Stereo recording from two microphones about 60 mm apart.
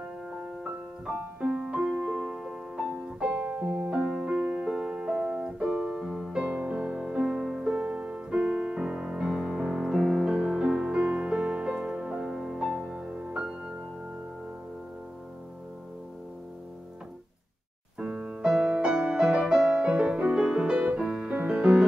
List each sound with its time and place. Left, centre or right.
1.4 s music: centre
6.3 s music: right
7.0 s piano: centre
9.9 s music: centre
11.0 s music: centre
17.9 s music: centre